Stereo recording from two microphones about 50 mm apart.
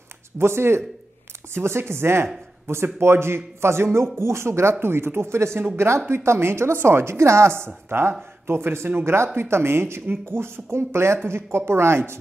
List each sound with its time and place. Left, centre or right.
0.4 s a woman's voice: right
4.7 s a woman's voice: right